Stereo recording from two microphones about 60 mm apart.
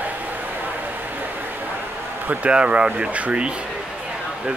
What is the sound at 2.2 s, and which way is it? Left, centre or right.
Speech, right.